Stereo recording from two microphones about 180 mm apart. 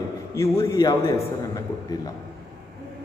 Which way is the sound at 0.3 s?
15° left (ahead or behind).